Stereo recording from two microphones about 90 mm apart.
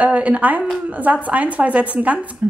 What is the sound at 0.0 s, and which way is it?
Speech, 15° right (ahead or behind).